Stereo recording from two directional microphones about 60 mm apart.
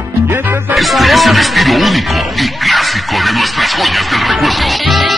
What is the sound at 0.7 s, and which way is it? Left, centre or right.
Music, centre.